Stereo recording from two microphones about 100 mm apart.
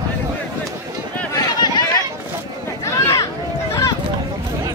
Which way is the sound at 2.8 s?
30° left (ahead or behind).